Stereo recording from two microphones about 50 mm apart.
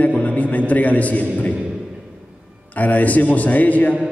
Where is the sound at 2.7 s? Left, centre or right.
Left.